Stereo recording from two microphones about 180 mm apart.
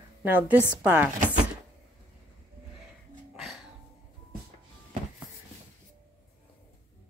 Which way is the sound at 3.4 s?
Centre (ahead or behind).